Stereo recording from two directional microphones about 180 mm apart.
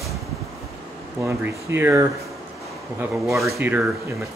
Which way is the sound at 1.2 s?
10° right (ahead or behind).